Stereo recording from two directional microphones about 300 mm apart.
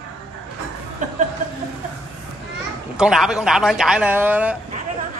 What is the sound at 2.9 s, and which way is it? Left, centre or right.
Speech, centre.